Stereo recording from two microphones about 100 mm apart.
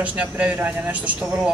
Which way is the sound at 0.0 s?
15° right (ahead or behind).